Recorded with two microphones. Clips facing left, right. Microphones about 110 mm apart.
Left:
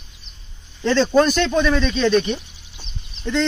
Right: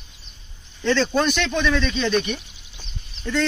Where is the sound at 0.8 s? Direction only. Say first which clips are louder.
Left 4 dB; 35° left (ahead or behind).